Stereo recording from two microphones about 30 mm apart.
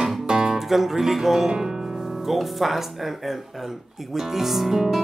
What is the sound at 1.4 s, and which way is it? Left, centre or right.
Speech, right.